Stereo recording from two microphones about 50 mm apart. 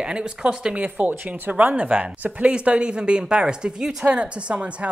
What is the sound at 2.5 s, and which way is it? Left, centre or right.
Speech, right.